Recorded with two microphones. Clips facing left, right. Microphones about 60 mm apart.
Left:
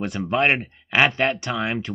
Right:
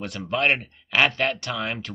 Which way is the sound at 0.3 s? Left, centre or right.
Left.